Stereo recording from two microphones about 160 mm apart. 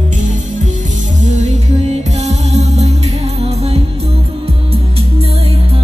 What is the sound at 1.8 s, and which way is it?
Music, 45° right (ahead or behind).